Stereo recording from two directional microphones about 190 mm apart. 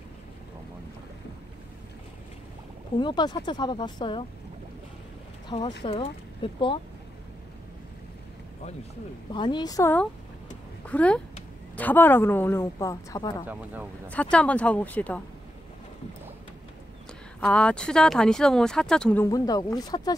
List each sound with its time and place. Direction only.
3.0 s speech: 25° left (ahead or behind)
5.5 s speech: 20° left (ahead or behind)
9.3 s speech: 25° left (ahead or behind)
10.9 s a woman's voice: 5° left (ahead or behind)
13.5 s speech: 10° right (ahead or behind)
14.1 s a woman's voice: 5° left (ahead or behind)
17.4 s speech: 5° left (ahead or behind)
19.3 s speech: 20° left (ahead or behind)